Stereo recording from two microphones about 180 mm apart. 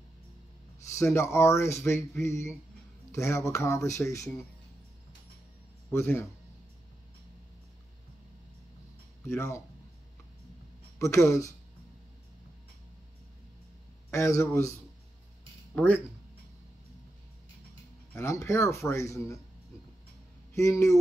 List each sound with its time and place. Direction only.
0.8 s speech: 15° left (ahead or behind)
5.9 s speech: 15° left (ahead or behind)
9.3 s speech: 15° left (ahead or behind)
11.0 s speech: 15° left (ahead or behind)
14.1 s speech: 15° left (ahead or behind)
15.7 s speech: 10° left (ahead or behind)
18.1 s speech: 15° left (ahead or behind)
20.5 s speech: 15° left (ahead or behind)